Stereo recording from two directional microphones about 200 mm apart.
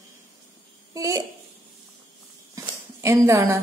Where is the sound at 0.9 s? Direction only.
15° right (ahead or behind).